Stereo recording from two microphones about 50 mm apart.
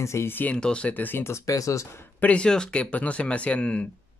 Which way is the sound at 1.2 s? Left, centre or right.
Left.